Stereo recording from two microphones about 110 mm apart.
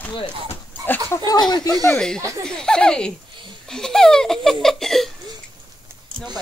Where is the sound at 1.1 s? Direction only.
35° left (ahead or behind).